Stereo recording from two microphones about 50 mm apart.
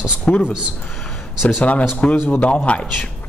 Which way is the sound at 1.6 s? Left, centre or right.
Left.